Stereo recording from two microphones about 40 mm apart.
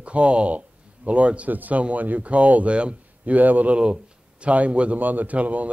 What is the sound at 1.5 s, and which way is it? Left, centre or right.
Speech, right.